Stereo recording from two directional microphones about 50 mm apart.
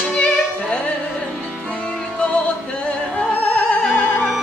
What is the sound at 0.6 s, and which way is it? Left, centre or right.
Music, left.